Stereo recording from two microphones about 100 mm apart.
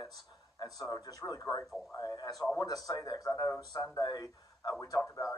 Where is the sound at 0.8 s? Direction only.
35° left (ahead or behind).